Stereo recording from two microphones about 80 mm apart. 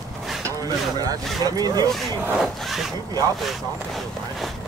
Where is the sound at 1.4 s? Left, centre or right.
Right.